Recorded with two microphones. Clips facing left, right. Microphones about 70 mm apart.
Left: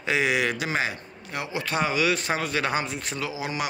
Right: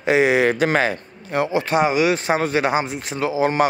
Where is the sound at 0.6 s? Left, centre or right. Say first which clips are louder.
Right 9 dB; right.